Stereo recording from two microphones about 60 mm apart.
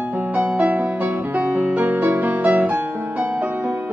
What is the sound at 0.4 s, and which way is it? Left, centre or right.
Music, right.